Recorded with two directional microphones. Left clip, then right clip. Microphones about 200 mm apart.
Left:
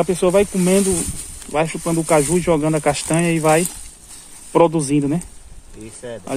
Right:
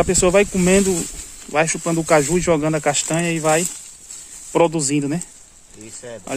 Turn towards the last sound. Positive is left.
turn(degrees=0)  # may be behind; listen again after turning